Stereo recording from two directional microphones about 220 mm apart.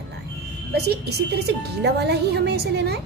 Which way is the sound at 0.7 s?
50° right (ahead or behind).